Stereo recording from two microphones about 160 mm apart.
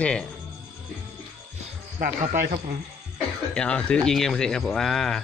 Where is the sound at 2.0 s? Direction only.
60° right (ahead or behind).